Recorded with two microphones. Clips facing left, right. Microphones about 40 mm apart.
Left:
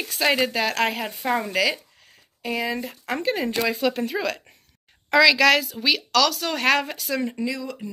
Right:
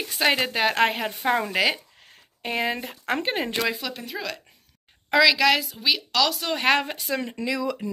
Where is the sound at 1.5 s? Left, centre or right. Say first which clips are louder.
Even; right.